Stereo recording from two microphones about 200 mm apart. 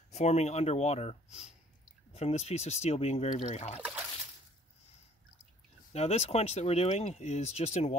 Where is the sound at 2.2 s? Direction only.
35° left (ahead or behind).